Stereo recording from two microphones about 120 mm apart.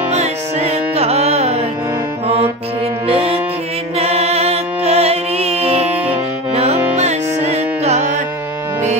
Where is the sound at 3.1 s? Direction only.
55° right (ahead or behind); by 8.2 s 70° right (ahead or behind).